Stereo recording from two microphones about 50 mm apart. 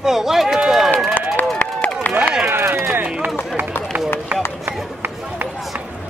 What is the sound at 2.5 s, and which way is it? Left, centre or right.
Speech, right.